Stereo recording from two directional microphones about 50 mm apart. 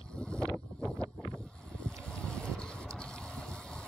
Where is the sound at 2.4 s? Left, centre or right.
Centre.